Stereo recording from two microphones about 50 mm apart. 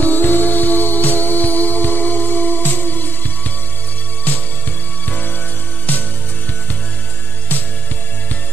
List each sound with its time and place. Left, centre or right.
0.0 s music: left